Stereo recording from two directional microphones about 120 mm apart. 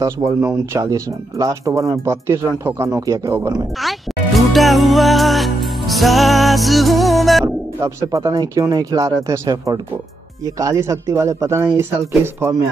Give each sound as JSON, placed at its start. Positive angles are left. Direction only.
{"t": 0.2, "sound": "speech", "side_deg": -30}
{"t": 3.8, "sound": "music", "side_deg": 0}
{"t": 7.4, "sound": "speech", "side_deg": -25}